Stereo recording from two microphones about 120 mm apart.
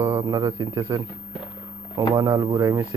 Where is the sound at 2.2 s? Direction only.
30° right (ahead or behind).